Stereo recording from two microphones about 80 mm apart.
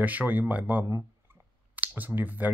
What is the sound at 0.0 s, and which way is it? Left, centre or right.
Speech, right.